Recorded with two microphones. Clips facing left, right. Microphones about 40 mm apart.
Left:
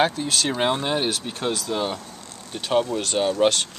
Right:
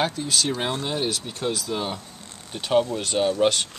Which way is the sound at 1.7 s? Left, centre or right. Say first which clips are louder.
Left 5 dB; centre.